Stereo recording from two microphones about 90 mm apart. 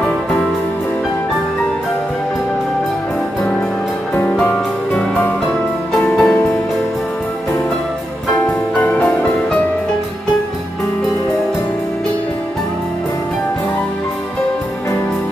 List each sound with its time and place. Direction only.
4.1 s music: 25° left (ahead or behind)
4.4 s music: 5° left (ahead or behind)
6.0 s music: 5° left (ahead or behind)